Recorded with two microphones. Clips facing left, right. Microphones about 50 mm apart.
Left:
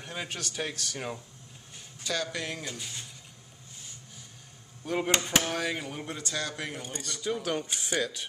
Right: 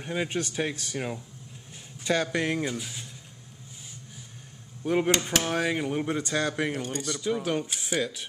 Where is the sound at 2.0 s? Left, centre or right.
Right.